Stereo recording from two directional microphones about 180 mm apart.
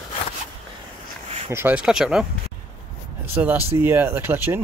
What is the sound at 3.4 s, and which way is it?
Speech, 10° right (ahead or behind).